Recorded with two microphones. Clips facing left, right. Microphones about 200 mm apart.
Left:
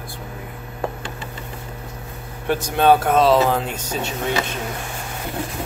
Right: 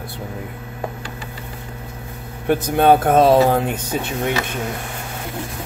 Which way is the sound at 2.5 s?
55° right (ahead or behind).